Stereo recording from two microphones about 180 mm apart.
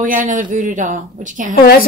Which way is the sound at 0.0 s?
45° right (ahead or behind).